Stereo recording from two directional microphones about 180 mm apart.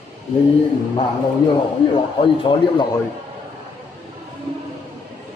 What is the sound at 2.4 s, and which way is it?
Speech, 25° left (ahead or behind).